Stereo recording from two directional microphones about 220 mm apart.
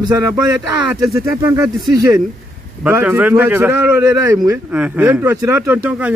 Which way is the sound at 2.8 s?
10° right (ahead or behind).